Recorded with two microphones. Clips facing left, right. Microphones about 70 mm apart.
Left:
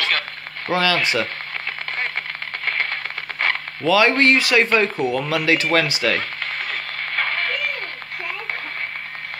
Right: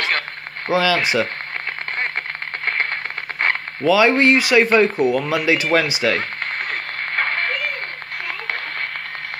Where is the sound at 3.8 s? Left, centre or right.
Centre.